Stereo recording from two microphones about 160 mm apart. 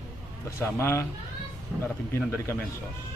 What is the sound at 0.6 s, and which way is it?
Speech, 15° left (ahead or behind).